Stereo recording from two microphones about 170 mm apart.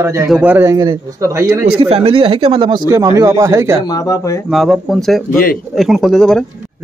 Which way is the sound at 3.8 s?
20° left (ahead or behind).